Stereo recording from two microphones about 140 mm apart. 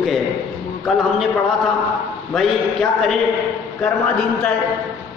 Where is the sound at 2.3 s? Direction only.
Centre (ahead or behind).